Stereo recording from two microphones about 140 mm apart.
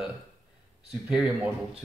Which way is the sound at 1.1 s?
5° right (ahead or behind).